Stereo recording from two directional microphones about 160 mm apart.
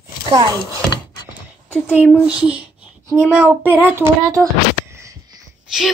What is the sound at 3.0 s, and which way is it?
Speech, 15° right (ahead or behind).